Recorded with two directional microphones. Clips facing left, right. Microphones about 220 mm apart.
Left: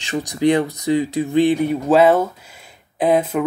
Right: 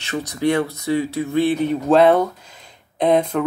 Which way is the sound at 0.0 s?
15° left (ahead or behind).